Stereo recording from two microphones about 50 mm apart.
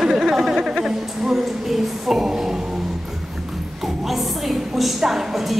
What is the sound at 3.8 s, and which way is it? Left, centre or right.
A woman's voice, centre.